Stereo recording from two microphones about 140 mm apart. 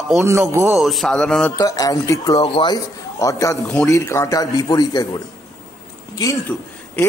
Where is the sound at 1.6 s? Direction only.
25° left (ahead or behind).